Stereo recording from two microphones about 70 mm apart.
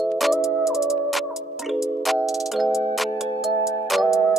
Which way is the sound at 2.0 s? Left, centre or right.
Centre.